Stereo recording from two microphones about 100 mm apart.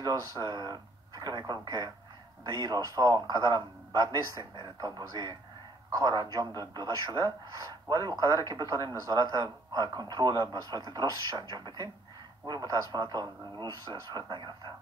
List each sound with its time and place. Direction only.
0.0 s a man's voice: 40° right (ahead or behind)